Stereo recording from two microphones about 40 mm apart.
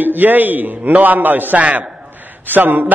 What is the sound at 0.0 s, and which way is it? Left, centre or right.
A man's voice, right.